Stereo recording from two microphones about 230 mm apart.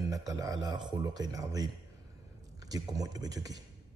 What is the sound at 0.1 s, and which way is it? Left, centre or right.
Speech, centre.